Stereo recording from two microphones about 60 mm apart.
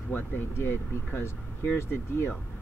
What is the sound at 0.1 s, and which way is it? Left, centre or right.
Speech, left.